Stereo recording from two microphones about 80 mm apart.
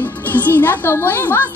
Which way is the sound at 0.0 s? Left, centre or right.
Left.